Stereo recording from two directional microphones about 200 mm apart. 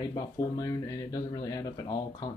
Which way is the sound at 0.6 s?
15° left (ahead or behind).